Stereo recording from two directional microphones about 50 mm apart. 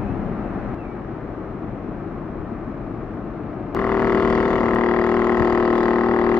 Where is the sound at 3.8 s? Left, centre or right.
Left.